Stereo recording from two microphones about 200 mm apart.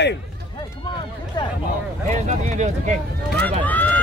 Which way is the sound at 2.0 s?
35° right (ahead or behind).